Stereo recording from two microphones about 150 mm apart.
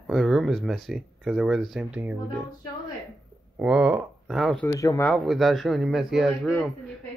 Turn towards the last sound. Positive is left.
turn(degrees=5)  # may be behind; listen again after turning